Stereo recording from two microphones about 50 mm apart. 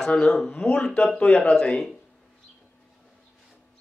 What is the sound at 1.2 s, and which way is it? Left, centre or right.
Speech, left.